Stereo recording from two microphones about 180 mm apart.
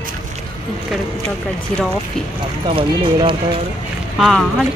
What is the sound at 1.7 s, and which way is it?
Speech, 5° left (ahead or behind).